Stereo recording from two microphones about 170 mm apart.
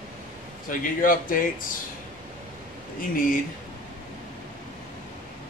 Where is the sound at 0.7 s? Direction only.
50° left (ahead or behind).